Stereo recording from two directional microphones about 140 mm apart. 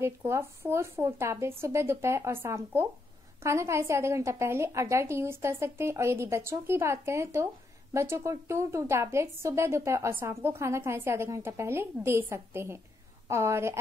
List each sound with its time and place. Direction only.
0.0 s a woman's voice: 20° right (ahead or behind)